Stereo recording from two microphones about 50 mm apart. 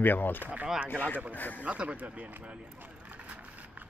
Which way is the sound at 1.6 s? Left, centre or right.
Right.